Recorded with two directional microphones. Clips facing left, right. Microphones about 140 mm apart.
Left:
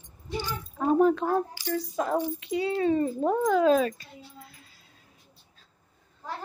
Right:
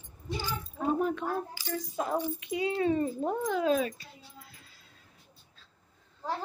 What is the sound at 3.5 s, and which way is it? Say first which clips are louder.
Speech: left 6 dB; 45° left (ahead or behind).